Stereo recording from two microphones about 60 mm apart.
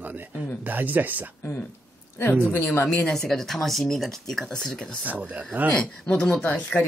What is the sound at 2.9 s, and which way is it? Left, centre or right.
Speech, centre.